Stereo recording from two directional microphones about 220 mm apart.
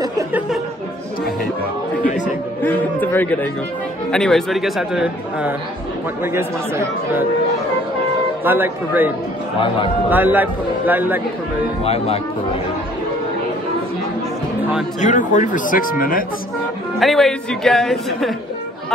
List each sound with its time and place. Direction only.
2.0 s a sound: 35° left (ahead or behind)
2.6 s a man's voice: 10° left (ahead or behind)
8.5 s a man's voice: 10° right (ahead or behind)
11.8 s speech: 25° left (ahead or behind)
15.0 s speech: 35° left (ahead or behind)
17.0 s speech: centre (ahead or behind)